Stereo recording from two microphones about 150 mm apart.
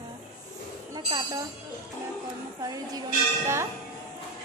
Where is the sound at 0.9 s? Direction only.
30° right (ahead or behind).